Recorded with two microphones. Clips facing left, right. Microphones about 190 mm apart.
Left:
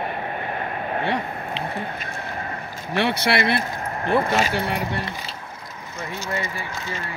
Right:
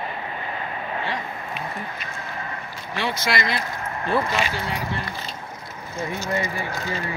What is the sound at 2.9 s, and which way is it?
Speech, 65° left (ahead or behind).